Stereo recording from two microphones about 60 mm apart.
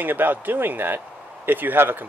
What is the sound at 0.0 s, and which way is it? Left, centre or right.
A man's voice, right.